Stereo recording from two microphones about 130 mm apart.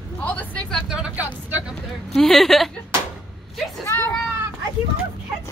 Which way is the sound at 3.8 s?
10° left (ahead or behind).